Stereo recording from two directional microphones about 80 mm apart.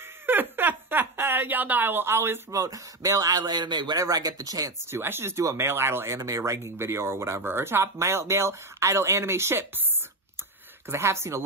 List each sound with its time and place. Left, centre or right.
0.3 s a sound: right
2.5 s a man's voice: right
4.0 s a man's voice: right
4.9 s speech: right
10.9 s speech: right